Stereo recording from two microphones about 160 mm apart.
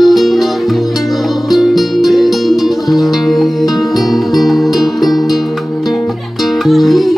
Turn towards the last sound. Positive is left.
turn(degrees=0)  # may be behind; listen again after turning